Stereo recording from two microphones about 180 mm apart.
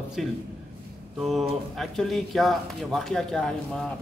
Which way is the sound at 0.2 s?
Centre (ahead or behind).